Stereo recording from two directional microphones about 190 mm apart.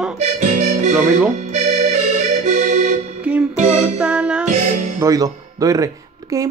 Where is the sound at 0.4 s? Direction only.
40° right (ahead or behind).